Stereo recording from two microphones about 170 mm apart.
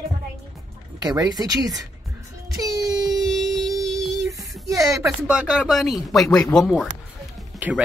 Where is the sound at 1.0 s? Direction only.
20° right (ahead or behind).